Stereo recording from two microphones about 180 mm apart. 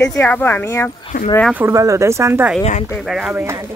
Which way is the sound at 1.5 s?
15° right (ahead or behind).